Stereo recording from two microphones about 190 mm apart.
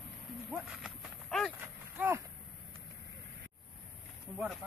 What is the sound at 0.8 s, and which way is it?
Horse, 5° left (ahead or behind).